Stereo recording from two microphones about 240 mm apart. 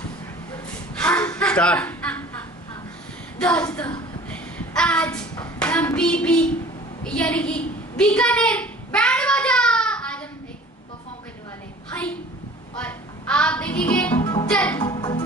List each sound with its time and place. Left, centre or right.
0.9 s chuckle: centre
3.3 s female singing: centre
4.3 s hands: centre
7.1 s a sound: centre
11.9 s a sound: centre
14.2 s music: centre
14.5 s female singing: centre
15.0 s music: centre